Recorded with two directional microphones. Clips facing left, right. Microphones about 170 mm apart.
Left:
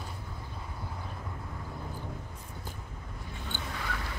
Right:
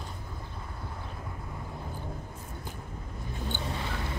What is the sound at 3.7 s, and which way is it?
Mouse, 25° right (ahead or behind).